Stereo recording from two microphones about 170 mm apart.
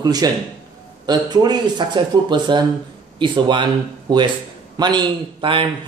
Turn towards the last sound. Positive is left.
turn(degrees=-30)  # may be behind; listen again after turning